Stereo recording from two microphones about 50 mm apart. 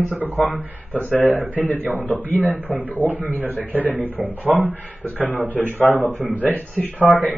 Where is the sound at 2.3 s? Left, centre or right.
Right.